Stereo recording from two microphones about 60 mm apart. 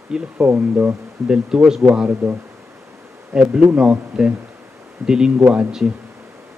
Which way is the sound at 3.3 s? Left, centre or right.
Centre.